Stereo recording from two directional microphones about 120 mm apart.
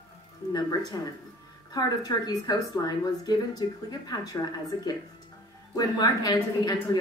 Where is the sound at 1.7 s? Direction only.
30° left (ahead or behind).